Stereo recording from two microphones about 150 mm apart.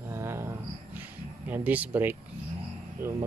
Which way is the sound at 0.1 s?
15° right (ahead or behind).